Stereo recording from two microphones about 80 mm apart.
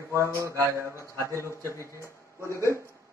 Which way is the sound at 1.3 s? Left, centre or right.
Left.